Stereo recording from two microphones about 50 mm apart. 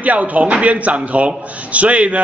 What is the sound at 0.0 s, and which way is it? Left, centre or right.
A man's voice, right.